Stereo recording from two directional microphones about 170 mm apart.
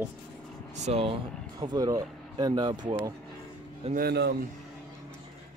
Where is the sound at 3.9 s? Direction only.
65° right (ahead or behind).